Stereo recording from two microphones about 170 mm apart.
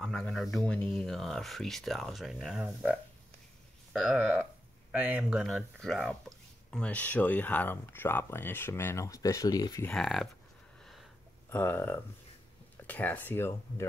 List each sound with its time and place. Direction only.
0.0 s speech: 5° left (ahead or behind)
4.2 s speech: 10° right (ahead or behind); by 9.8 s 25° left (ahead or behind)
9.8 s speech: centre (ahead or behind)
10.8 s a sound: centre (ahead or behind)
11.5 s speech: 10° left (ahead or behind)